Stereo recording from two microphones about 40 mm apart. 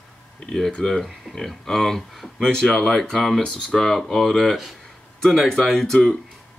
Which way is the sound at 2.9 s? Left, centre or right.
Centre.